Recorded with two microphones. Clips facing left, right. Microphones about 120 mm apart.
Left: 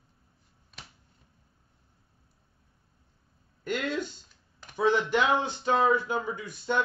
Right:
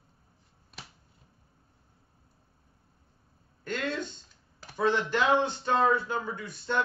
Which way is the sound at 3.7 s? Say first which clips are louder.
Left 2 dB; 10° left (ahead or behind).